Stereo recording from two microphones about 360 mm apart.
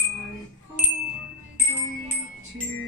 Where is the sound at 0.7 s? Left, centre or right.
Centre.